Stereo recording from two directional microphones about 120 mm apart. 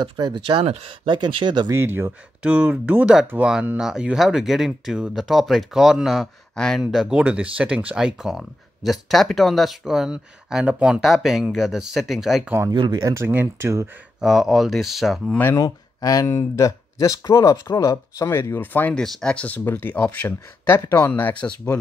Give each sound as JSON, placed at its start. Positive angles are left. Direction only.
{"t": 0.0, "sound": "speech", "side_deg": -40}
{"t": 1.7, "sound": "speech", "side_deg": -20}
{"t": 12.7, "sound": "speech", "side_deg": -40}
{"t": 13.0, "sound": "speech", "side_deg": -20}
{"t": 14.2, "sound": "speech", "side_deg": 0}
{"t": 15.5, "sound": "speech", "side_deg": 30}
{"t": 21.1, "sound": "speech", "side_deg": 10}